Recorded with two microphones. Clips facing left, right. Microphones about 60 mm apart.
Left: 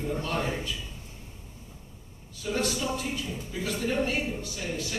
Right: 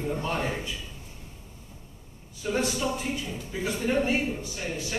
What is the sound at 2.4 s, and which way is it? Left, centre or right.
A man's voice, right.